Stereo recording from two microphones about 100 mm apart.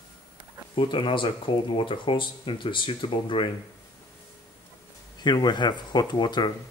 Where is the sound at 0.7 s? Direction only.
55° left (ahead or behind).